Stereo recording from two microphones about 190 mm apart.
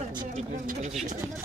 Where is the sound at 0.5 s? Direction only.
40° right (ahead or behind).